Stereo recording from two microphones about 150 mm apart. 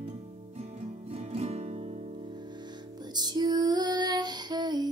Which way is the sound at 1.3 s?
45° right (ahead or behind).